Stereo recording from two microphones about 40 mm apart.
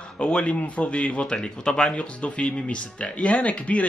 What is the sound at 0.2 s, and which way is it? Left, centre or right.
Speech, left.